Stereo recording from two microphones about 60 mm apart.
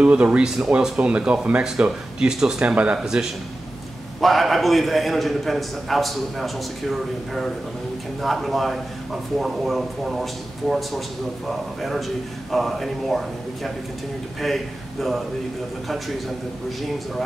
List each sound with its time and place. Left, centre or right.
0.0 s speech: right
0.4 s speech: centre
3.0 s a man's voice: centre
14.4 s a man's voice: centre